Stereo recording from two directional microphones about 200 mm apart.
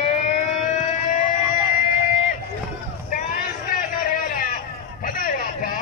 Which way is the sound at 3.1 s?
40° left (ahead or behind).